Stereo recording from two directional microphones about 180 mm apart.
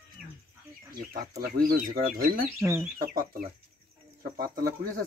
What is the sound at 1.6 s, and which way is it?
Speech, 55° right (ahead or behind).